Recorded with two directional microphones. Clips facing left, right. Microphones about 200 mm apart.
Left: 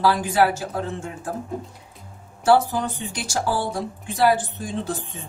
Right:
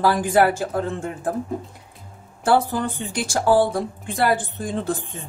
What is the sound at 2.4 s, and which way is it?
Speech, 55° right (ahead or behind).